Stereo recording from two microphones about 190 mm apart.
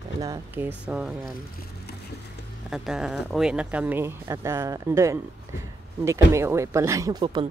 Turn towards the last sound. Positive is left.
turn(degrees=-25)  # may be behind; listen again after turning